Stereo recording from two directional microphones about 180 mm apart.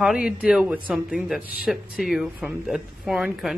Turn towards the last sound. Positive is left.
turn(degrees=-5)  # may be behind; listen again after turning